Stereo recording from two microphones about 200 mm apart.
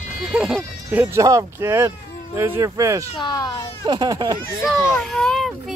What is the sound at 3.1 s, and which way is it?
Speech, 20° left (ahead or behind).